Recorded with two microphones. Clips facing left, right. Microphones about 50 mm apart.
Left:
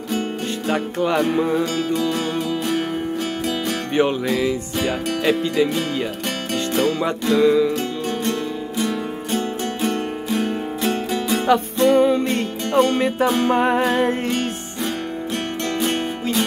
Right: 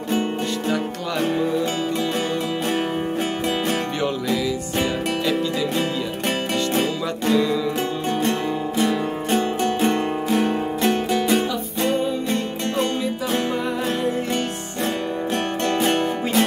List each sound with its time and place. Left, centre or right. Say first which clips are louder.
0.7 s music: left 4 dB; left
1.8 s music: left 2 dB; right
3.9 s music: left 4 dB; left
4.8 s speech: left 4 dB; left
8.3 s music: right 1 dB; right
10.4 s music: right 2 dB; right
11.9 s music: left 7 dB; left
15.7 s music: right 2 dB; right